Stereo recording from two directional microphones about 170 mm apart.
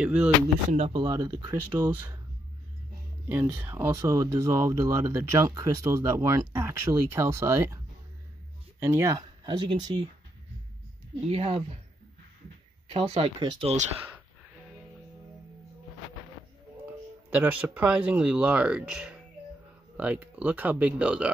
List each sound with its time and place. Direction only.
0.0 s speech: 5° right (ahead or behind)
0.7 s speech: 40° right (ahead or behind)
0.9 s speech: 25° right (ahead or behind)
3.3 s speech: 10° right (ahead or behind)
11.2 s speech: 35° right (ahead or behind)
12.8 s speech: 35° right (ahead or behind)
13.4 s speech: 25° right (ahead or behind)
17.3 s speech: 10° right (ahead or behind)